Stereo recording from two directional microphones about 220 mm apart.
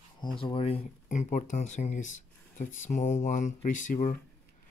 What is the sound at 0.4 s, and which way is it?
Speech, 25° left (ahead or behind).